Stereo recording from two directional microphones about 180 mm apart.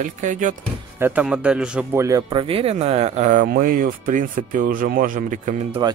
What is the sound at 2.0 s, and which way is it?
Speech, 20° right (ahead or behind).